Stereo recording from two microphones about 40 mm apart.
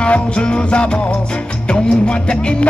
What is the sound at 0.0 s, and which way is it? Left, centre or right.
Music, left.